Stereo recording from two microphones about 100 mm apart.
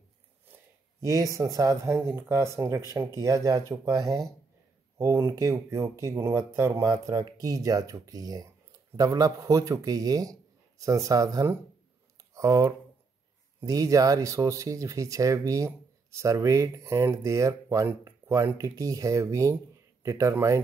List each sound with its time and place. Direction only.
1.0 s speech: 35° right (ahead or behind)
4.9 s speech: 30° right (ahead or behind)
12.2 s a sound: 35° right (ahead or behind)
13.7 s speech: 35° right (ahead or behind)